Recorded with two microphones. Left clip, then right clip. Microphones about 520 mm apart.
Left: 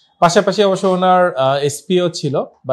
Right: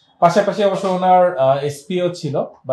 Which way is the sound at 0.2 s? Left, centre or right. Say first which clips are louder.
Left 2 dB; left.